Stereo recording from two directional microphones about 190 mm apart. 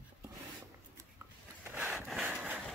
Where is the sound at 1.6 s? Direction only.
10° right (ahead or behind).